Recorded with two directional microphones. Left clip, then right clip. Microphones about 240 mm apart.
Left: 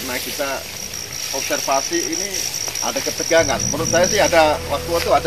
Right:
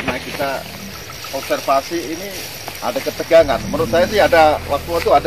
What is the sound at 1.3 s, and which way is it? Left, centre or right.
Speech, right.